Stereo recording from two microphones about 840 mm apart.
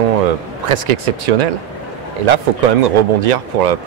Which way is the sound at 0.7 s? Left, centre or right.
Right.